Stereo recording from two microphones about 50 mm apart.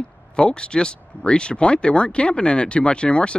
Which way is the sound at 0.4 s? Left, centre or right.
Centre.